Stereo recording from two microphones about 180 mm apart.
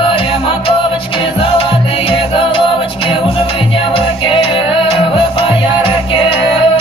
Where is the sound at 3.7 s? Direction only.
30° left (ahead or behind).